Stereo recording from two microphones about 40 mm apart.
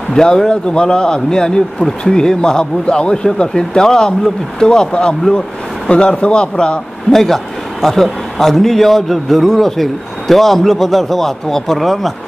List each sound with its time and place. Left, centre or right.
0.1 s speech: centre
7.1 s a man's voice: centre